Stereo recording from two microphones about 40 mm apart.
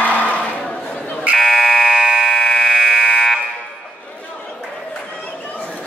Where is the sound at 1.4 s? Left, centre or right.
Centre.